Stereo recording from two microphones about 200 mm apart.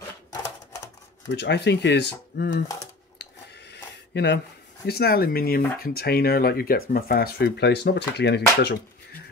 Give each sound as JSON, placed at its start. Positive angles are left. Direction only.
{"t": 1.3, "sound": "speech", "side_deg": 60}
{"t": 3.2, "sound": "a sound", "side_deg": 60}
{"t": 4.8, "sound": "speech", "side_deg": 50}